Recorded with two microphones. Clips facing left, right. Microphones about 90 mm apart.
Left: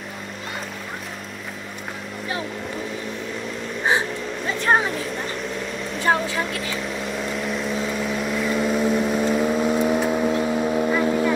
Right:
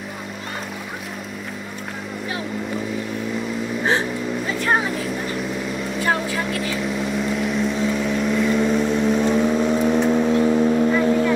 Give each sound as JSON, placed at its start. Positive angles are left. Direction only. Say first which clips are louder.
{"t": 6.8, "sound": "vehicle", "louder": "right 4 dB", "side_deg": 0}